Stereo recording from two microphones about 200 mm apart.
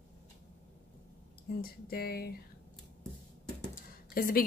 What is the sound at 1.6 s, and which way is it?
Speech, 50° left (ahead or behind).